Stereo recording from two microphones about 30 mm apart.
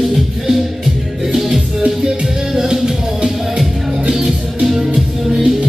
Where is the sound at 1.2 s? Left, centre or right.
Centre.